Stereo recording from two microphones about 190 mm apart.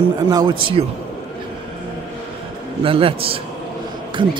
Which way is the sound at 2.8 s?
30° right (ahead or behind).